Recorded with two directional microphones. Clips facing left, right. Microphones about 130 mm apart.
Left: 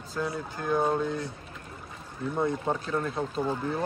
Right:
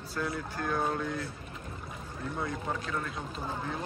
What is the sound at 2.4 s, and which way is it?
Speech, 30° left (ahead or behind).